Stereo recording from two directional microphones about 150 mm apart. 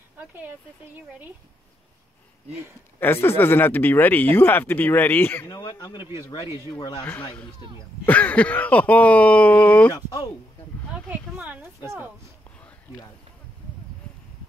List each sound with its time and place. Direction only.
3.0 s speech: 15° left (ahead or behind)
5.6 s speech: 25° left (ahead or behind)
6.4 s speech: 20° right (ahead or behind)
8.0 s speech: 10° left (ahead or behind)
9.8 s speech: 25° left (ahead or behind)
10.9 s speech: 10° right (ahead or behind)